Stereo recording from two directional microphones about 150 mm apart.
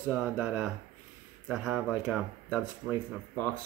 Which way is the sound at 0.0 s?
10° right (ahead or behind).